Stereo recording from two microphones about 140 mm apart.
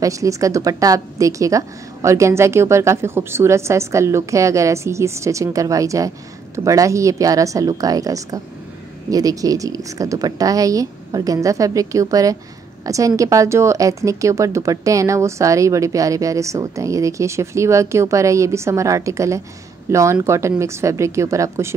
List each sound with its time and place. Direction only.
0.0 s a woman's voice: 25° right (ahead or behind)